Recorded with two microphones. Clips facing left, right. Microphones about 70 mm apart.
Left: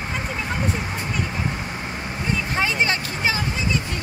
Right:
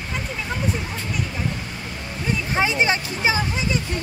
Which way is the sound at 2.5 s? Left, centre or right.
Centre.